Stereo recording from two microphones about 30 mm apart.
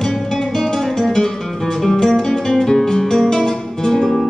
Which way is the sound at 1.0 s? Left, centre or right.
Centre.